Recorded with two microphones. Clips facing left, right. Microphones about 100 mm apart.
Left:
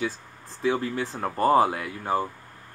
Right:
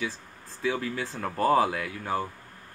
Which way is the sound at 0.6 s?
40° left (ahead or behind).